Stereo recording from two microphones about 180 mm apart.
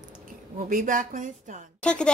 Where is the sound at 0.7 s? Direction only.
45° right (ahead or behind).